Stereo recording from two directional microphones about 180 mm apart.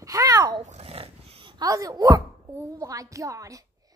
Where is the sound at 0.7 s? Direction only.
35° right (ahead or behind); by 3.6 s 20° right (ahead or behind).